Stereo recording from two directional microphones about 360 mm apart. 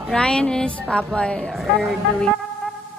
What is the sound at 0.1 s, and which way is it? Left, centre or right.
A woman's voice, centre.